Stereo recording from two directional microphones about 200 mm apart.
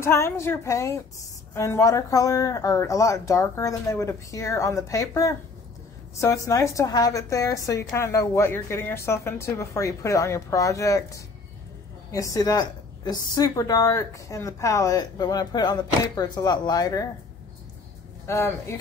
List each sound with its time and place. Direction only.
0.0 s a woman's voice: 15° left (ahead or behind)
18.2 s a woman's voice: 15° left (ahead or behind)